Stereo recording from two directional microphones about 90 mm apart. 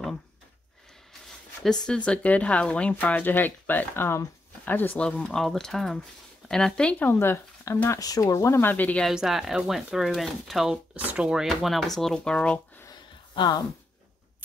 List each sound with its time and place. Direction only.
1.9 s speech: 15° left (ahead or behind)
5.0 s speech: 10° left (ahead or behind)
7.1 s speech: 25° left (ahead or behind)
8.0 s speech: 40° left (ahead or behind)
8.5 s speech: 20° left (ahead or behind)
9.1 s speech: 5° right (ahead or behind)
11.4 s speech: centre (ahead or behind)
13.3 s speech: 55° left (ahead or behind)